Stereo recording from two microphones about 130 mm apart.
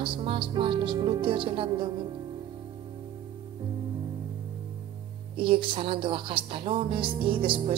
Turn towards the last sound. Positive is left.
turn(degrees=-40)  # may be behind; listen again after turning